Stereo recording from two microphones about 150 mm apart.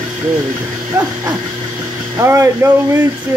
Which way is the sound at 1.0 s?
20° right (ahead or behind).